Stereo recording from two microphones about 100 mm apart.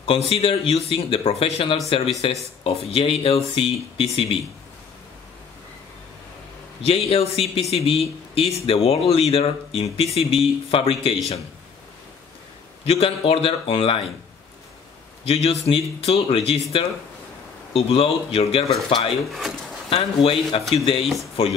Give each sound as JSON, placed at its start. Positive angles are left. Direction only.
{"t": 0.0, "sound": "speech", "side_deg": 75}
{"t": 6.9, "sound": "speech", "side_deg": 80}
{"t": 12.8, "sound": "speech", "side_deg": 75}
{"t": 15.2, "sound": "speech", "side_deg": 85}
{"t": 17.7, "sound": "speech", "side_deg": 75}
{"t": 19.9, "sound": "a man's voice", "side_deg": 65}